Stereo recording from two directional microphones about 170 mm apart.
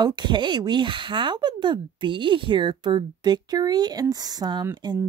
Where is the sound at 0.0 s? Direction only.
25° right (ahead or behind).